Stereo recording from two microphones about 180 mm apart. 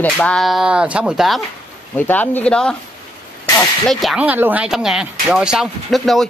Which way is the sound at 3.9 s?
Centre (ahead or behind).